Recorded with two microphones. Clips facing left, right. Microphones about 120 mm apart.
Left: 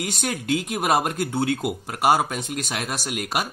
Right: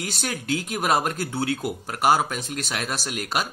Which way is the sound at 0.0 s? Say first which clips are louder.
Left 3 dB; 15° left (ahead or behind).